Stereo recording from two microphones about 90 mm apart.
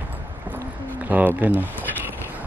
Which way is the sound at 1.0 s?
20° right (ahead or behind).